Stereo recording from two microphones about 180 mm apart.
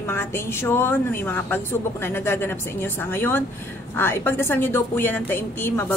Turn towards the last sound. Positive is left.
turn(degrees=10)  # may be behind; listen again after turning